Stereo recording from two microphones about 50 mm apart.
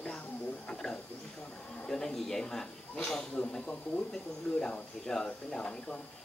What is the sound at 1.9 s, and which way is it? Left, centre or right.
Speech, centre.